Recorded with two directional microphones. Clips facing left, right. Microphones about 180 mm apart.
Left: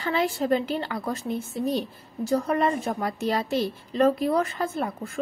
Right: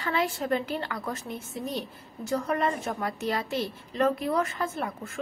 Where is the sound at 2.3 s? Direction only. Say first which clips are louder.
Left 4 dB; 30° left (ahead or behind).